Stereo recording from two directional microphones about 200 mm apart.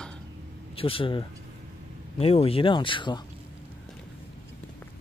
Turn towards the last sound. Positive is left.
turn(degrees=20)  # may be behind; listen again after turning